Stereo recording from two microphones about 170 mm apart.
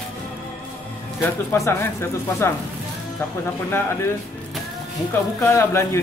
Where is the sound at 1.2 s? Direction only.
15° left (ahead or behind).